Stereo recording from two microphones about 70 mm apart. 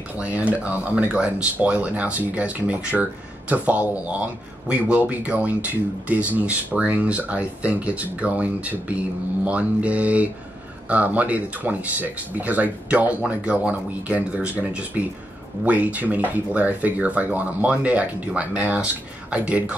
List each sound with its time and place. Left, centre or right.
0.2 s speech: centre